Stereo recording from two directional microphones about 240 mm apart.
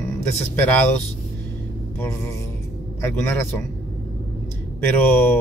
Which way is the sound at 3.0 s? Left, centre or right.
Centre.